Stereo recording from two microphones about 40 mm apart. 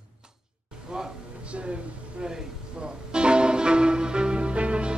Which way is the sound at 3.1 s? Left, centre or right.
Right.